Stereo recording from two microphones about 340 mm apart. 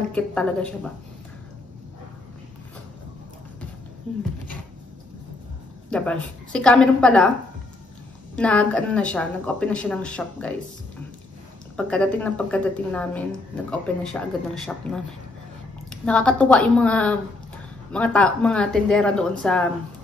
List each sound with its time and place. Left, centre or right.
0.1 s a woman's voice: centre
5.9 s a woman's voice: centre
8.4 s a woman's voice: centre
11.7 s a woman's voice: centre
15.9 s a woman's voice: centre